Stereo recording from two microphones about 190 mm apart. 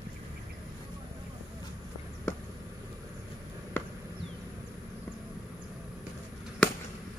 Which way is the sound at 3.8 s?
10° left (ahead or behind).